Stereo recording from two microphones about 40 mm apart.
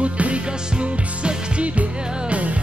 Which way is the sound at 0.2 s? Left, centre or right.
Right.